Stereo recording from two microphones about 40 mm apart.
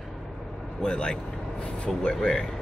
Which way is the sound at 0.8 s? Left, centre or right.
Left.